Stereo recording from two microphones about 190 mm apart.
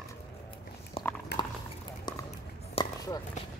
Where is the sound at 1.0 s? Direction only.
30° left (ahead or behind).